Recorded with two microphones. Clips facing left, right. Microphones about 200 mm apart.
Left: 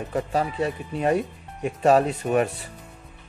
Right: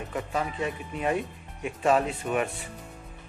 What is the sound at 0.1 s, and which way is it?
Speech, 35° left (ahead or behind).